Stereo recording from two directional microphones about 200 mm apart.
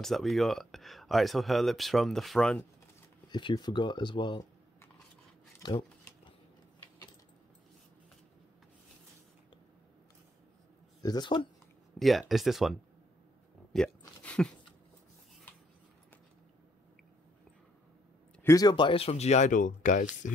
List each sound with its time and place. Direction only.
0.0 s speech: centre (ahead or behind)
3.3 s speech: 25° left (ahead or behind)
5.6 s a sound: 20° left (ahead or behind)
11.0 s speech: 20° left (ahead or behind)
12.0 s speech: centre (ahead or behind)
13.7 s a sound: 5° left (ahead or behind)
18.4 s speech: 15° left (ahead or behind); by 20.1 s 40° left (ahead or behind)